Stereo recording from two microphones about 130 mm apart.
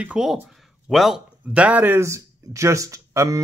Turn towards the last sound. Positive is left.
turn(degrees=-25)  # may be behind; listen again after turning